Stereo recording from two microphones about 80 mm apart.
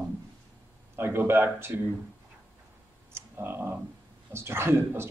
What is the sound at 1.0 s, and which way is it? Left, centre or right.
Speech, right.